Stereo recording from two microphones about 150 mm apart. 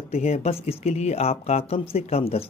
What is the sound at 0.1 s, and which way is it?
Speech, 45° left (ahead or behind).